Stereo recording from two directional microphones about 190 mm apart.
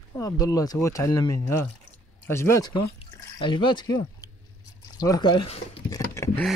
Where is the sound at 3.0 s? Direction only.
20° left (ahead or behind).